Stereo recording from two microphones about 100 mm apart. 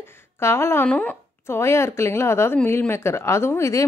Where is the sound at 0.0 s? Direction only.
25° left (ahead or behind).